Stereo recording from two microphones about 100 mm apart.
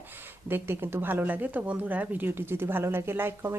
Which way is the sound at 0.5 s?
25° right (ahead or behind).